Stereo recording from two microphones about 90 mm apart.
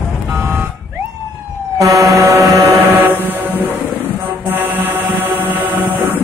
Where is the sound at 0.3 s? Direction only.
20° right (ahead or behind).